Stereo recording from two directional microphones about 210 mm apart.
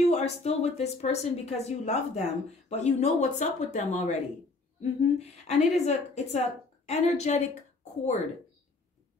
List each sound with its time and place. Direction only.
0.0 s a woman's voice: 30° left (ahead or behind)
5.2 s a woman's voice: 30° left (ahead or behind)